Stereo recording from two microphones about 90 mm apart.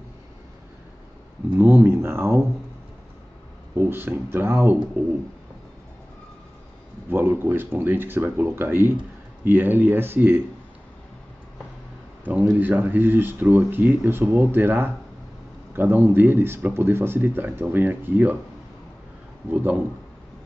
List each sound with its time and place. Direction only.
1.6 s a sound: 25° right (ahead or behind)
3.7 s speech: 25° right (ahead or behind)
7.1 s speech: 25° right (ahead or behind)
12.3 s speech: 20° right (ahead or behind)
19.5 s speech: 15° right (ahead or behind)